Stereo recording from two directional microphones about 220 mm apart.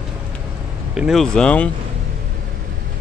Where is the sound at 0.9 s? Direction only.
Centre (ahead or behind).